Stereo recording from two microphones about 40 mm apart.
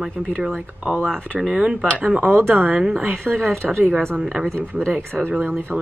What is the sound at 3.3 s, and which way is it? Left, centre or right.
Speech, centre.